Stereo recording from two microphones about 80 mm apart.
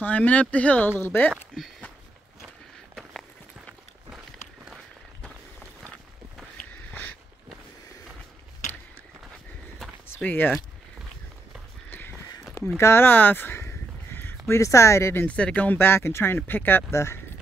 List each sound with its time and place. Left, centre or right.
0.0 s speech: centre
3.0 s walk: centre
10.2 s speech: left
11.9 s a sound: left
12.5 s a sound: left
14.5 s a woman's voice: left
15.2 s a woman's voice: centre; by 17.2 s left